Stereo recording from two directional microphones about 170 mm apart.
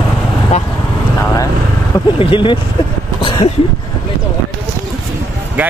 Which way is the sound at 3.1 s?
30° left (ahead or behind).